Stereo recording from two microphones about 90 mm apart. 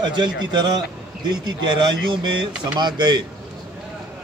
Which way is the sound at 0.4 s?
55° right (ahead or behind).